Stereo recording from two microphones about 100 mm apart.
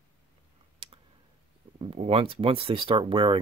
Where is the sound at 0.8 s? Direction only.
60° right (ahead or behind).